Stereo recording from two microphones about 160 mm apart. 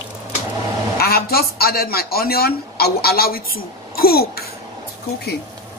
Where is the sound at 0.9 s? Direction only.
70° left (ahead or behind).